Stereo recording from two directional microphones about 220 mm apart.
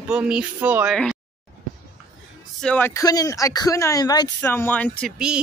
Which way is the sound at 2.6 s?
10° left (ahead or behind).